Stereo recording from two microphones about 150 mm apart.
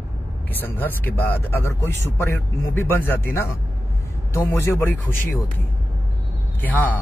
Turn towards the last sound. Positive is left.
turn(degrees=10)  # may be behind; listen again after turning